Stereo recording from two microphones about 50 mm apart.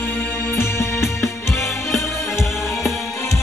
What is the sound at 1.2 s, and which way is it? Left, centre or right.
Music, left.